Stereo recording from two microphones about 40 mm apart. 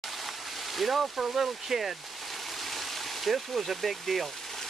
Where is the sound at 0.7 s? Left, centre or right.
Centre.